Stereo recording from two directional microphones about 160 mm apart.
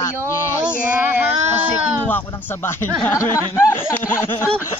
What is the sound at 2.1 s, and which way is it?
A man's voice, 10° left (ahead or behind).